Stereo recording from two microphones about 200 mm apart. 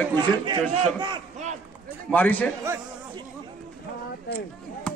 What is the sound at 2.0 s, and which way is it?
Speech, 10° left (ahead or behind).